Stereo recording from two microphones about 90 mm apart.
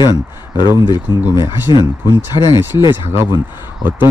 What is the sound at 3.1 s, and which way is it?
Speech, 30° right (ahead or behind).